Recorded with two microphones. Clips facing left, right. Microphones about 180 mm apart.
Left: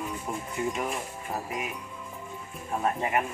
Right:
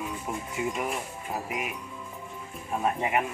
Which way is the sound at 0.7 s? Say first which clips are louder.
Even; centre (ahead or behind).